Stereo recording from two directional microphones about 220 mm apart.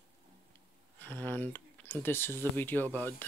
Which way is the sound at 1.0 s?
10° left (ahead or behind).